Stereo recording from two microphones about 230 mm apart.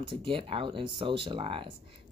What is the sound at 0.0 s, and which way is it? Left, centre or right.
Speech, right.